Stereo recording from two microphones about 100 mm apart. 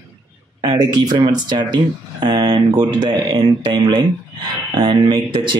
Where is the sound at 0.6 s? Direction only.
45° right (ahead or behind).